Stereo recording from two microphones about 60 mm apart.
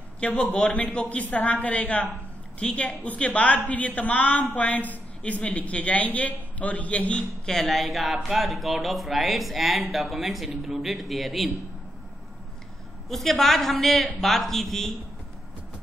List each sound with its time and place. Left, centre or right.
0.2 s a woman's voice: left
7.5 s speech: centre
13.1 s speech: centre